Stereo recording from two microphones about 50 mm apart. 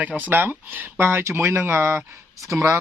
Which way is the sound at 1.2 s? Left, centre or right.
Right.